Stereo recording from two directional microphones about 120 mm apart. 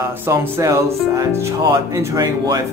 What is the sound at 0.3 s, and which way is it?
Speech, 25° right (ahead or behind).